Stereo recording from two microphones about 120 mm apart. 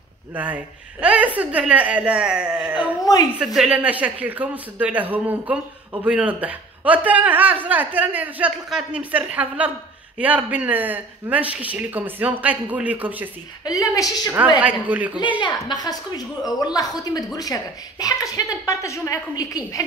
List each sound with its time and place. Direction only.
0.3 s speech: 15° right (ahead or behind)
13.7 s a woman's voice: 30° left (ahead or behind)
14.6 s speech: 10° right (ahead or behind)
15.1 s a woman's voice: 40° left (ahead or behind)